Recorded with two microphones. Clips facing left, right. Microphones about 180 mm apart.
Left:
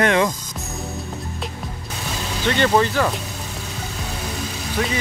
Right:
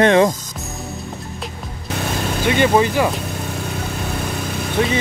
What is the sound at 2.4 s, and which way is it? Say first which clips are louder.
Speech: right 2 dB; 10° right (ahead or behind).